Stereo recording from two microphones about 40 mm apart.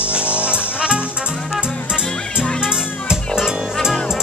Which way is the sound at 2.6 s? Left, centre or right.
Centre.